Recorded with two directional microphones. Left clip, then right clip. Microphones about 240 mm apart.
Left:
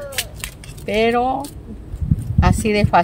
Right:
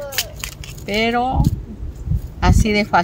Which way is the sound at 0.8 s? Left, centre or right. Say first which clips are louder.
Left 2 dB; centre.